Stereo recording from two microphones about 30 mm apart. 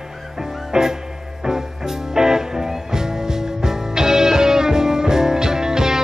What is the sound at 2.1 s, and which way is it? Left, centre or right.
Music, centre.